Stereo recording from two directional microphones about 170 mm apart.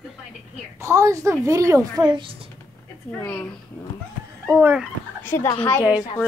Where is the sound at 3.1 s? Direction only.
10° left (ahead or behind).